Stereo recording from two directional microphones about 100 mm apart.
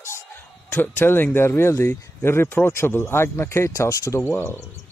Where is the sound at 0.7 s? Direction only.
20° left (ahead or behind).